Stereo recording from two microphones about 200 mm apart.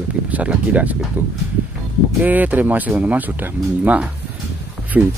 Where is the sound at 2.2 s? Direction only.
10° right (ahead or behind).